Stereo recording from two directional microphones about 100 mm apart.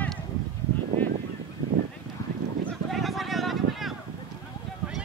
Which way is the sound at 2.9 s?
Centre (ahead or behind).